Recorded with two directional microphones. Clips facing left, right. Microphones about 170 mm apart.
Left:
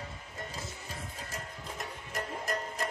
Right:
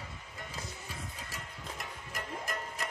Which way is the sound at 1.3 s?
40° left (ahead or behind).